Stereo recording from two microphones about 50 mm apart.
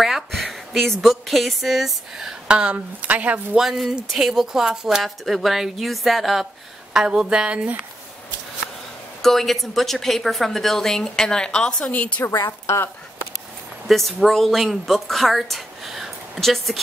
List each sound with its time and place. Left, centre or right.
0.0 s a woman's voice: centre
2.4 s speech: right
2.7 s a woman's voice: right
3.5 s a woman's voice: centre
6.9 s speech: centre
9.2 s a woman's voice: centre; by 12.2 s left
12.3 s a woman's voice: left
13.8 s a woman's voice: centre
15.5 s a sound: centre
16.3 s a woman's voice: centre